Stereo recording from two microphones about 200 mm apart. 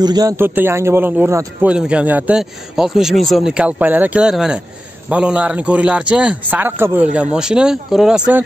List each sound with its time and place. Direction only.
0.0 s speech: 20° right (ahead or behind); by 8.4 s 5° right (ahead or behind)